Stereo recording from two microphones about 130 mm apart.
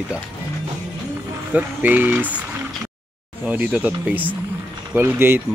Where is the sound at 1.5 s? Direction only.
15° right (ahead or behind).